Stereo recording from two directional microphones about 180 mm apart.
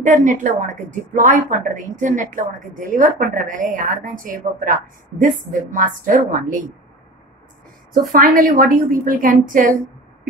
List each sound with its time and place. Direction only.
0.0 s a woman's voice: 45° right (ahead or behind)
7.9 s a woman's voice: 50° right (ahead or behind)